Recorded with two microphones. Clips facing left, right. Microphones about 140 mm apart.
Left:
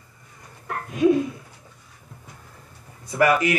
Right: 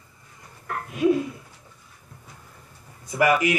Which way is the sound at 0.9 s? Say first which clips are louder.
Left 2 dB; 20° left (ahead or behind).